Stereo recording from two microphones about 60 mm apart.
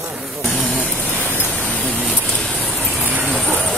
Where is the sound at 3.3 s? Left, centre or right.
Centre.